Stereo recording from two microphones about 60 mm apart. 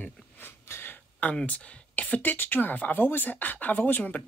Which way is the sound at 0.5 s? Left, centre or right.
Left.